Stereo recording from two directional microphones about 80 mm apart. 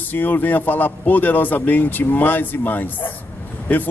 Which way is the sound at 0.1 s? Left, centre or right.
Left.